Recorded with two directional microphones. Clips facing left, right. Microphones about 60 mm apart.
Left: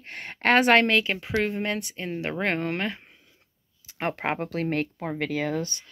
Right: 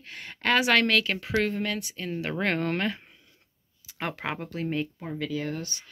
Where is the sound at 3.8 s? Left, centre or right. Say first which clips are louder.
Left 4 dB; left.